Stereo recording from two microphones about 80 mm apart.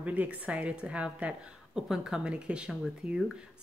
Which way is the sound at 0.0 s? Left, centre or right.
Centre.